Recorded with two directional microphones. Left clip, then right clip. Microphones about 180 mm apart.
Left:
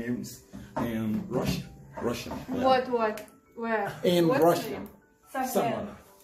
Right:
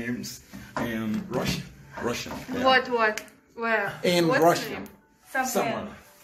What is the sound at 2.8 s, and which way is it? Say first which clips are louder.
Speech: right 4 dB; 25° left (ahead or behind).